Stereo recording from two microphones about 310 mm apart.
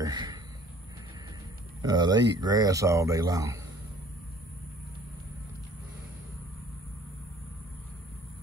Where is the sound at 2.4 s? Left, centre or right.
Centre.